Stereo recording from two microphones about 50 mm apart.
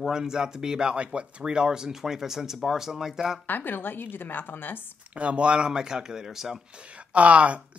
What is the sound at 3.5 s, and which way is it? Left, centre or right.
A woman's voice, left.